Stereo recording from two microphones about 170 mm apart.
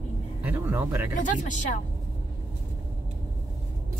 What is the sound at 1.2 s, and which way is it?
Speech, 50° left (ahead or behind).